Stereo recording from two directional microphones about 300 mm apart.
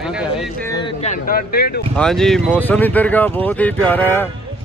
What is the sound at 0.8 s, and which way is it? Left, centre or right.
Speech, left.